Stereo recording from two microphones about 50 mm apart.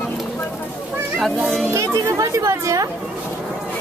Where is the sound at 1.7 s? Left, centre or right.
Right.